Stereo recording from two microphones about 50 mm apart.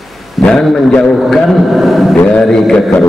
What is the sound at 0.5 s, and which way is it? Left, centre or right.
A man's voice, centre.